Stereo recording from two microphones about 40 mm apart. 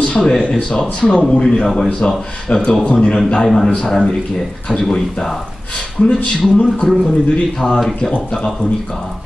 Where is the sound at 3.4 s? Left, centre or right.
Centre.